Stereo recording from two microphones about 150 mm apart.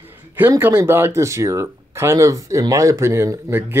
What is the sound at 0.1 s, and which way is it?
Speech, 15° right (ahead or behind).